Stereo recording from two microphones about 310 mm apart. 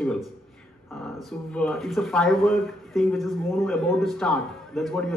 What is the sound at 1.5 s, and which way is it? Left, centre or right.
A man's voice, centre.